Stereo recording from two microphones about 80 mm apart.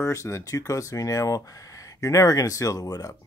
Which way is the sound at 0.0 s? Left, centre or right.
Left.